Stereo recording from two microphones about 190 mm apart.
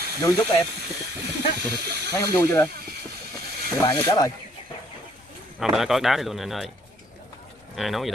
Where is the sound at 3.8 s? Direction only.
20° left (ahead or behind).